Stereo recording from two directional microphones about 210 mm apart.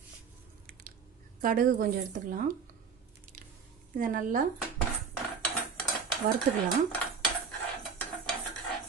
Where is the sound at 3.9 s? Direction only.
40° right (ahead or behind).